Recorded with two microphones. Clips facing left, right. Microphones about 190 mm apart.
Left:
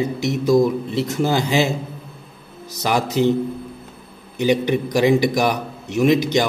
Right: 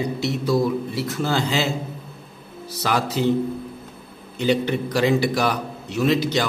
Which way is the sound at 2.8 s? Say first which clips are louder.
Left 4 dB; 20° left (ahead or behind).